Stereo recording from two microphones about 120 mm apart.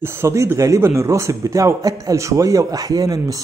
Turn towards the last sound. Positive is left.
turn(degrees=-30)  # may be behind; listen again after turning